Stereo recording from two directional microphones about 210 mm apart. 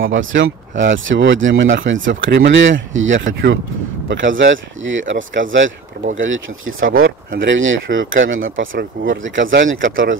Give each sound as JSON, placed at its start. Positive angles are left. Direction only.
{"t": 0.0, "sound": "speech", "side_deg": -65}
{"t": 7.0, "sound": "speech", "side_deg": -45}
{"t": 8.7, "sound": "speech", "side_deg": -55}